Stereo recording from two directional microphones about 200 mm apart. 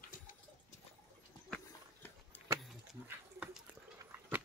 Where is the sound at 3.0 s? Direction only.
10° right (ahead or behind).